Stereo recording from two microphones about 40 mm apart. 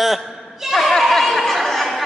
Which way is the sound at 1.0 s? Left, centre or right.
Centre.